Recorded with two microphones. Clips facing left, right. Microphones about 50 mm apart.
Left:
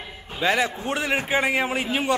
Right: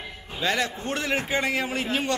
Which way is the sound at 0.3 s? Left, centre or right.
Centre.